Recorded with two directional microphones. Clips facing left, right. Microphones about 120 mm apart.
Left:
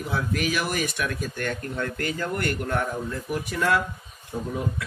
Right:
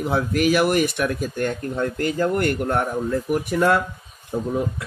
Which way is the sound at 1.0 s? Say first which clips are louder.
Right 6 dB; 30° right (ahead or behind).